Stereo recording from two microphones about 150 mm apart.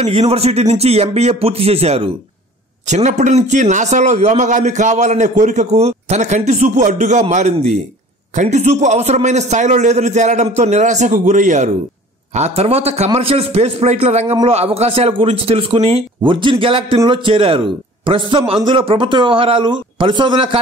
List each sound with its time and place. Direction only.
0.0 s a man's voice: 45° right (ahead or behind)
2.9 s a man's voice: 50° right (ahead or behind)
12.4 s a man's voice: 45° right (ahead or behind)